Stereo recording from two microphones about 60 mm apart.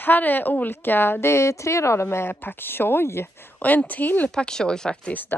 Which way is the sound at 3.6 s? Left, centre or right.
Left.